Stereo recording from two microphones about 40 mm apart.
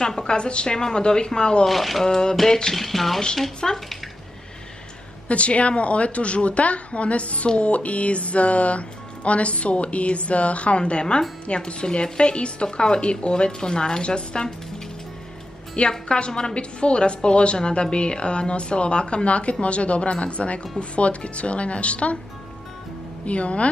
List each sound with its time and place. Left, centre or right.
0.0 s a woman's voice: centre
1.7 s a sound: centre
2.0 s speech: centre
2.3 s a sound: centre
3.3 s speech: centre
5.3 s a woman's voice: left
15.9 s a woman's voice: left
23.2 s a woman's voice: left